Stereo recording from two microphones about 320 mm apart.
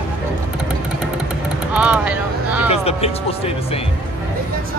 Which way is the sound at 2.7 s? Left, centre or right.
Centre.